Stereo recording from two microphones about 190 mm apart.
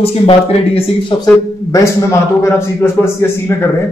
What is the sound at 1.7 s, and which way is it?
A man's voice, 15° left (ahead or behind).